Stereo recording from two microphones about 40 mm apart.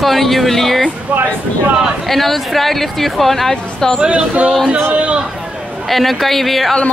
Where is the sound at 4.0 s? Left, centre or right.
Right.